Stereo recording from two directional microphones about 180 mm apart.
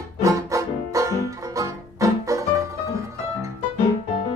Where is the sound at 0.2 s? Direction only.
20° right (ahead or behind).